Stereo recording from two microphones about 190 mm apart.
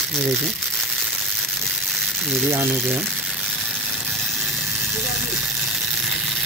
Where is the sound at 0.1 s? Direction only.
Centre (ahead or behind).